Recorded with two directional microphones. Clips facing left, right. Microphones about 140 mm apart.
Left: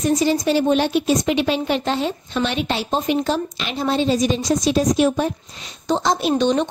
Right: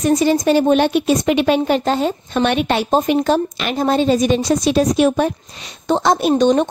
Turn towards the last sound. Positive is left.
turn(degrees=-45)  # may be behind; listen again after turning